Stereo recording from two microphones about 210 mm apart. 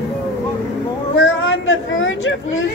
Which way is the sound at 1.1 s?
60° left (ahead or behind).